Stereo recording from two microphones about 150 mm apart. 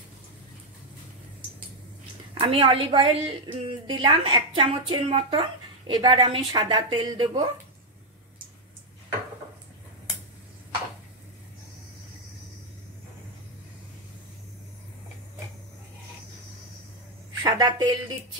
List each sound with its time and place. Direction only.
2.4 s a woman's voice: 35° right (ahead or behind)
17.5 s a woman's voice: 25° right (ahead or behind)